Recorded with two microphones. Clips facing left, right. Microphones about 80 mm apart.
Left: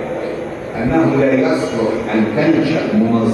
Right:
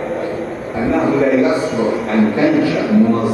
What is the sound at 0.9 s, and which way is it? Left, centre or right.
A man's voice, centre.